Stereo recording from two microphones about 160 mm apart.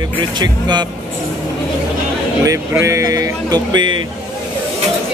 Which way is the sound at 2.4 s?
20° right (ahead or behind).